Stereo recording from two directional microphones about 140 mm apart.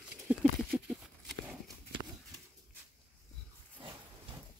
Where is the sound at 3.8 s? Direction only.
40° right (ahead or behind).